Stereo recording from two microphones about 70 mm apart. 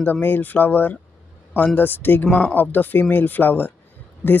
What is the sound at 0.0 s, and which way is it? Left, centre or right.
Speech, left.